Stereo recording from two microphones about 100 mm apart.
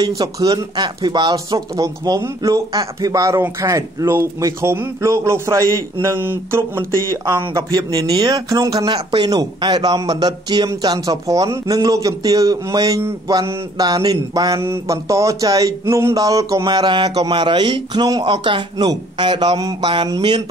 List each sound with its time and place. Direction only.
0.0 s a man's voice: 40° right (ahead or behind)
8.9 s speech: 50° right (ahead or behind)
14.6 s speech: 30° right (ahead or behind)
16.6 s speech: 50° right (ahead or behind)